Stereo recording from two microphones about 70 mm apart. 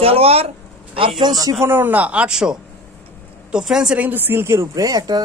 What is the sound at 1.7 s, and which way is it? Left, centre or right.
Speech, right.